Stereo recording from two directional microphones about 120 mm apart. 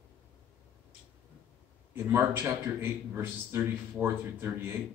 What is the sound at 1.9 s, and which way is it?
Speech, 20° right (ahead or behind).